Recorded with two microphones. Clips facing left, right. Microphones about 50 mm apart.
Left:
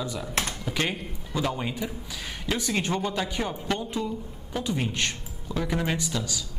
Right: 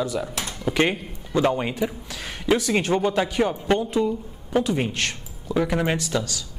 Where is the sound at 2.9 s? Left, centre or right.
Right.